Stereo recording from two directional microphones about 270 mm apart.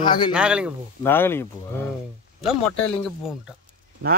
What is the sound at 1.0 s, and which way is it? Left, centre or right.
Speech, centre.